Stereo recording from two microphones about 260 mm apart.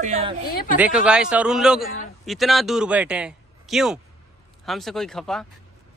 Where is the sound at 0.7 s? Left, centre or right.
Centre.